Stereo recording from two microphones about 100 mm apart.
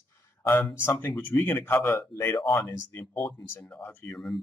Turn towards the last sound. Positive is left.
turn(degrees=20)  # may be behind; listen again after turning